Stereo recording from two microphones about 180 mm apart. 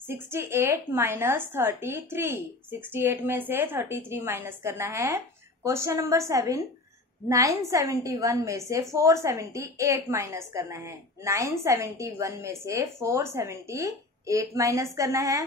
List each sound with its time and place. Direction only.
0.1 s a woman's voice: 15° right (ahead or behind)